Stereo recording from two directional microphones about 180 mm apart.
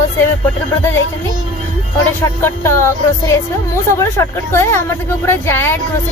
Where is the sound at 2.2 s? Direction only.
15° left (ahead or behind).